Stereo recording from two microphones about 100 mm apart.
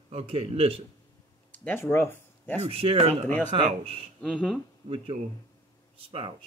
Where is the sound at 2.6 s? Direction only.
75° right (ahead or behind).